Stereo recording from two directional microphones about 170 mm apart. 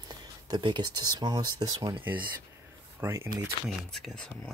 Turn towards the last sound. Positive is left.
turn(degrees=5)  # may be behind; listen again after turning